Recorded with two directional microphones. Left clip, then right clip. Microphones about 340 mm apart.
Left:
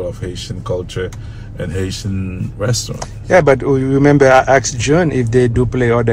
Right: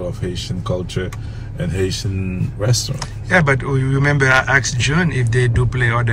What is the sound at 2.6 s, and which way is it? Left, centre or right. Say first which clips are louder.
A man's voice: left 2 dB; centre.